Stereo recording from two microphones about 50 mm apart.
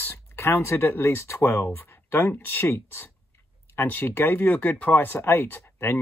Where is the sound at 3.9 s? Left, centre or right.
Left.